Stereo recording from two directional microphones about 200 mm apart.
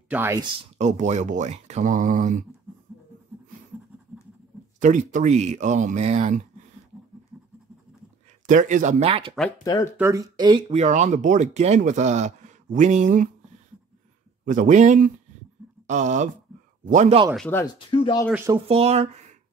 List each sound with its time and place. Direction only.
0.1 s speech: 10° right (ahead or behind)
0.7 s speech: 35° right (ahead or behind)
4.7 s speech: 40° right (ahead or behind)
8.5 s speech: 40° right (ahead or behind)
9.9 s speech: 15° right (ahead or behind); by 13.3 s 40° right (ahead or behind)
14.4 s speech: 40° right (ahead or behind)
17.4 s speech: 10° left (ahead or behind)
17.7 s speech: 25° left (ahead or behind)
18.5 s speech: 30° right (ahead or behind)